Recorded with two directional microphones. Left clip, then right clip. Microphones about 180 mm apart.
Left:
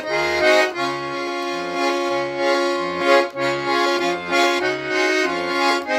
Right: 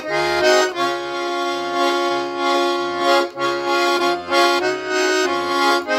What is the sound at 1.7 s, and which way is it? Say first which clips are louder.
Music: right 2 dB; centre (ahead or behind).